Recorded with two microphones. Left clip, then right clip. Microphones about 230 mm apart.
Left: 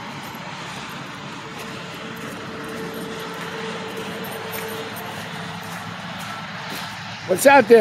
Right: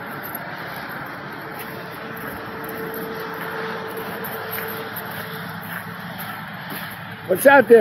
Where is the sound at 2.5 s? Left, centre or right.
Left.